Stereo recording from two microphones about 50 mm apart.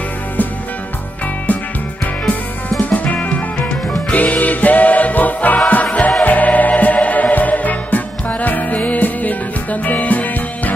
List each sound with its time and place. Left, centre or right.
2.8 s music: left